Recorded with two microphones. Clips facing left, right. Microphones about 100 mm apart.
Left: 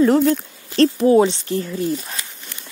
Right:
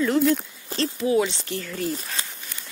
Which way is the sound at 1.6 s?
25° left (ahead or behind).